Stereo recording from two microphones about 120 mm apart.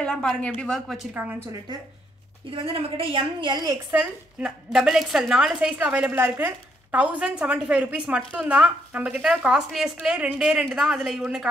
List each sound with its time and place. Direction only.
0.0 s a woman's voice: 5° left (ahead or behind)
1.1 s a woman's voice: 15° right (ahead or behind)
1.7 s speech: 35° right (ahead or behind)
2.5 s a woman's voice: 50° right (ahead or behind)
3.9 s a woman's voice: 10° right (ahead or behind)